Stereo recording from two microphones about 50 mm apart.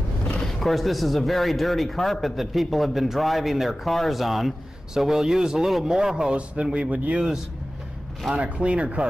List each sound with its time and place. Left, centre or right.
0.6 s a man's voice: centre; by 7.2 s right
8.4 s speech: right